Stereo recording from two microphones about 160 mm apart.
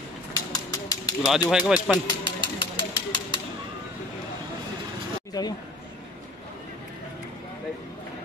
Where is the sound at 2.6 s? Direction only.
30° left (ahead or behind).